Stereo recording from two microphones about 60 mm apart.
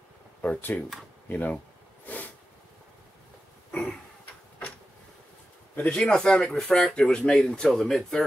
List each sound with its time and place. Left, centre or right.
0.4 s speech: left
2.0 s snort: left
5.8 s speech: centre